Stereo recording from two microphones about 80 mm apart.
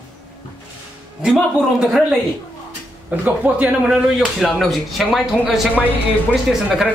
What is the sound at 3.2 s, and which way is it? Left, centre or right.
Speech, centre.